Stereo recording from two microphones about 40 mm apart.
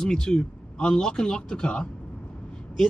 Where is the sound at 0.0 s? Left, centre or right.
Centre.